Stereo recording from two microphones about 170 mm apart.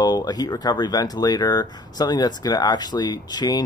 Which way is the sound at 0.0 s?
25° left (ahead or behind).